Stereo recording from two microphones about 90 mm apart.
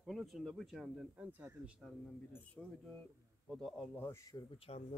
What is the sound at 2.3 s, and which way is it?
Speech, 20° left (ahead or behind).